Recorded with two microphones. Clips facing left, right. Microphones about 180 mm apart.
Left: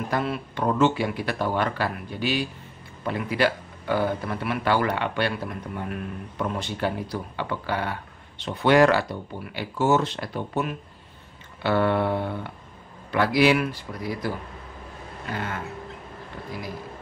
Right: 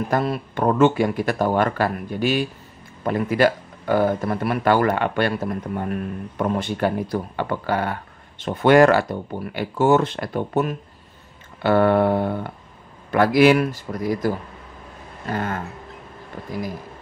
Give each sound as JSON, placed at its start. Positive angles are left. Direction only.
{"t": 0.1, "sound": "speech", "side_deg": -45}
{"t": 15.3, "sound": "speech", "side_deg": -45}